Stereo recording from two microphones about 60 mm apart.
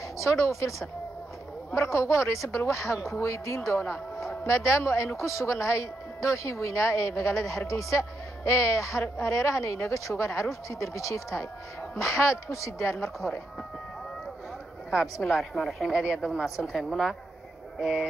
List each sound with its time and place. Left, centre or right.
0.2 s a woman's voice: left
15.2 s a woman's voice: centre
15.9 s speech: centre
16.2 s a woman's voice: centre